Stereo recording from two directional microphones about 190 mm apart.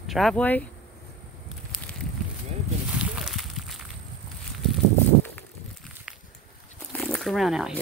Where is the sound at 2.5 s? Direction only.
35° right (ahead or behind).